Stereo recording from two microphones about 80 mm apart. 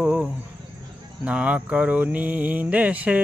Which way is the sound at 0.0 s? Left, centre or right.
Centre.